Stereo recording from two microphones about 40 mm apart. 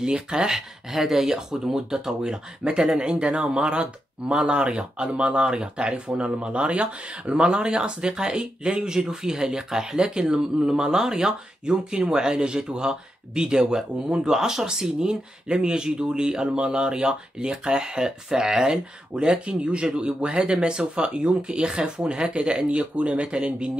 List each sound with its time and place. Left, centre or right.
0.0 s speech: centre